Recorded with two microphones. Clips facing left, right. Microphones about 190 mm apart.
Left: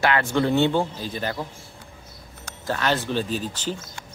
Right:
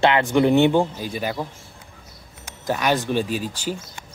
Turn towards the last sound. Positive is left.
turn(degrees=-10)  # may be behind; listen again after turning